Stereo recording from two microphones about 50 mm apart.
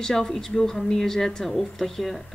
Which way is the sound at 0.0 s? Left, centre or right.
Centre.